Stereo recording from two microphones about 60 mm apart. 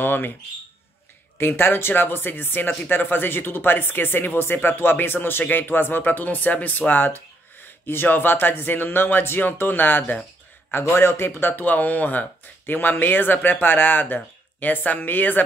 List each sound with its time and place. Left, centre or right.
0.0 s speech: left
1.4 s speech: left
10.7 s speech: left